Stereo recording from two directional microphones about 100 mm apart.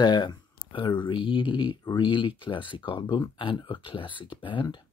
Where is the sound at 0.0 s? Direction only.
45° left (ahead or behind).